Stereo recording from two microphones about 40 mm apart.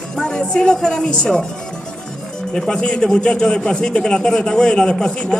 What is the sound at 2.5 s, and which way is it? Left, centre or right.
Speech, centre.